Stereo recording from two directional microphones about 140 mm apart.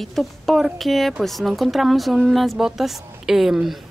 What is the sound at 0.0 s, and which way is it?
Speech, centre (ahead or behind).